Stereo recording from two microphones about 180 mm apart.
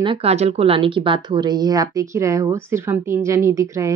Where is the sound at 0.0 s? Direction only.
30° right (ahead or behind).